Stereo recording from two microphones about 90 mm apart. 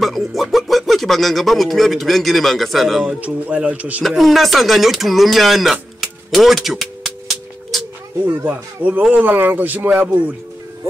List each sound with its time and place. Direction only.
0.0 s speech: centre (ahead or behind)
3.2 s speech: 15° right (ahead or behind)
4.0 s speech: centre (ahead or behind)
7.1 s music: 5° right (ahead or behind)
8.3 s speech: 20° right (ahead or behind)
9.8 s speech: 10° right (ahead or behind)